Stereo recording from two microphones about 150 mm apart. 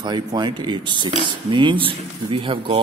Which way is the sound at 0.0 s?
30° right (ahead or behind).